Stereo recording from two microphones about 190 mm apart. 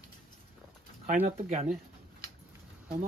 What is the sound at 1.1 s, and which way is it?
Speech, 40° right (ahead or behind).